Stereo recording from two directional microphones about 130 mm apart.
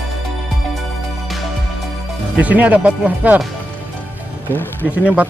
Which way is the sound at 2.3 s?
10° right (ahead or behind).